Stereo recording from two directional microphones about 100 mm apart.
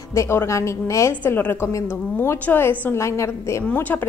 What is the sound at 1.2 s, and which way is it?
Speech, 20° left (ahead or behind).